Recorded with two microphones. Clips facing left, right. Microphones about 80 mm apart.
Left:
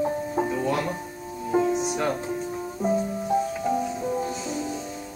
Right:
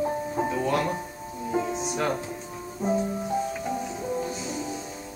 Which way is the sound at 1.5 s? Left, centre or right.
Centre.